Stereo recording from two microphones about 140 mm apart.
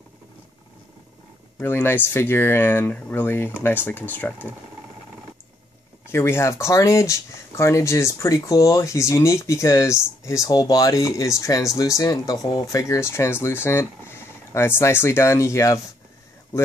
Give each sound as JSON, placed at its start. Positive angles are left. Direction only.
{"t": 1.6, "sound": "speech", "side_deg": 15}
{"t": 6.1, "sound": "speech", "side_deg": 20}